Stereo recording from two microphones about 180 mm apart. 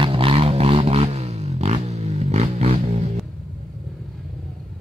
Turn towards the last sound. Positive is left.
turn(degrees=-35)  # may be behind; listen again after turning